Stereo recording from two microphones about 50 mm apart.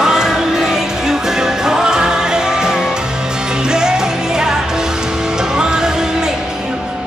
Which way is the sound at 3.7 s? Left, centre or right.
Centre.